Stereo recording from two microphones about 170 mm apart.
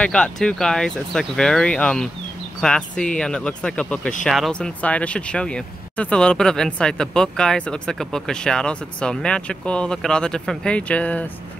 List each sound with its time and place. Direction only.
0.0 s speech: 5° left (ahead or behind)